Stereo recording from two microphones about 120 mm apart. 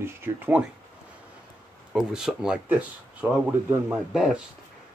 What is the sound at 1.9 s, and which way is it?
Speech, 5° right (ahead or behind).